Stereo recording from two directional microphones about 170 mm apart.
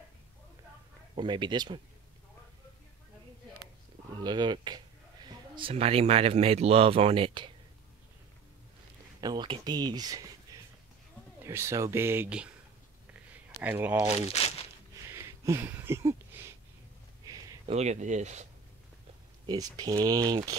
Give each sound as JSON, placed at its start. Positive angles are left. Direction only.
{"t": 1.1, "sound": "speech", "side_deg": -30}
{"t": 4.2, "sound": "speech", "side_deg": -25}
{"t": 5.6, "sound": "speech", "side_deg": -35}
{"t": 9.2, "sound": "speech", "side_deg": -25}
{"t": 13.3, "sound": "a sound", "side_deg": -10}
{"t": 14.4, "sound": "crumpling", "side_deg": 40}
{"t": 15.0, "sound": "a sound", "side_deg": -15}
{"t": 17.6, "sound": "speech", "side_deg": -40}
{"t": 19.4, "sound": "speech", "side_deg": -25}